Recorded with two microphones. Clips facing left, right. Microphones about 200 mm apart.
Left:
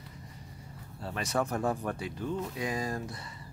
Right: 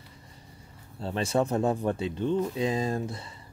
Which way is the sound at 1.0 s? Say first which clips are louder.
Right 5 dB; 25° right (ahead or behind).